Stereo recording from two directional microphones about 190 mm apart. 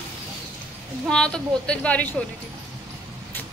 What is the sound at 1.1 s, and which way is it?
Speech, 5° left (ahead or behind).